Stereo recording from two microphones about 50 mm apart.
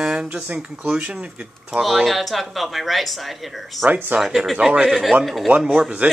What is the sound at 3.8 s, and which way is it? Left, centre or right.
Speech, right.